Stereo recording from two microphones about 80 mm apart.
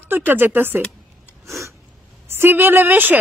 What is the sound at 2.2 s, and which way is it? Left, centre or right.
Speech, right.